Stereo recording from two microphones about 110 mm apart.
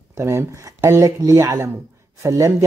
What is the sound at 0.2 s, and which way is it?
Speech, 25° right (ahead or behind).